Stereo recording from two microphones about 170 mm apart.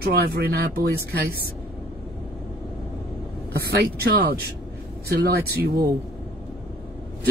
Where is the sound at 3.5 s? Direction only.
65° right (ahead or behind).